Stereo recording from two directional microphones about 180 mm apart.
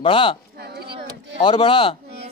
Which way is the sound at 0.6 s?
65° right (ahead or behind).